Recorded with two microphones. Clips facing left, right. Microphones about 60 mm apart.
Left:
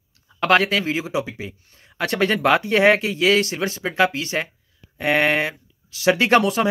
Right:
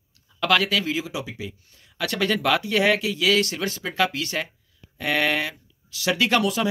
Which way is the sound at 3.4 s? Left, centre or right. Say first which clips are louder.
Left 4 dB; left.